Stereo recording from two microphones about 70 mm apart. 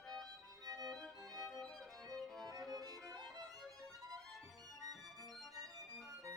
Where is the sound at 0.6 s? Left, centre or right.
Right.